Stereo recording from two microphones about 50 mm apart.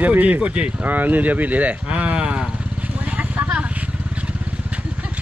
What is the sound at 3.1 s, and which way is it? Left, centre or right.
Vehicle, right.